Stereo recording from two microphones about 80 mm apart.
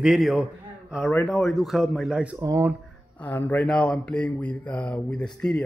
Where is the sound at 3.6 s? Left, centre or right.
Centre.